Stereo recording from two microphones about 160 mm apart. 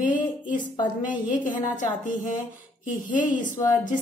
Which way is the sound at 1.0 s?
55° left (ahead or behind).